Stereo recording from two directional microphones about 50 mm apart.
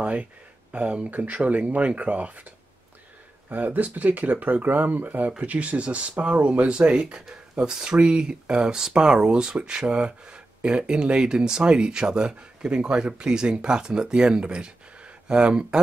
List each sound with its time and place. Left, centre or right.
0.0 s speech: right
3.4 s speech: right; by 15.8 s centre